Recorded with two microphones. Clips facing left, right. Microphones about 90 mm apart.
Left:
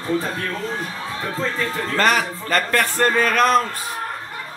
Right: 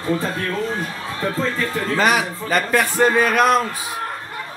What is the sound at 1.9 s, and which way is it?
A man's voice, 5° right (ahead or behind).